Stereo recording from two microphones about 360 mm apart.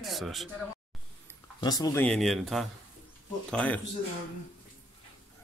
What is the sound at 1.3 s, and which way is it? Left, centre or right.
Speech, centre.